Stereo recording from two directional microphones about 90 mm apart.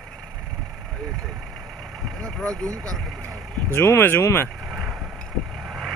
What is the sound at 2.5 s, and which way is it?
Speech, 40° right (ahead or behind).